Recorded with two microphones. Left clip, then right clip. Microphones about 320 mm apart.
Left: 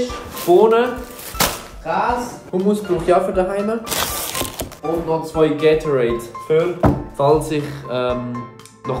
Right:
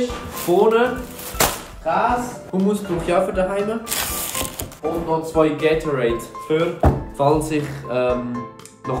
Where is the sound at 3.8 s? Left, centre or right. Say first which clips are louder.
Left 3 dB; left.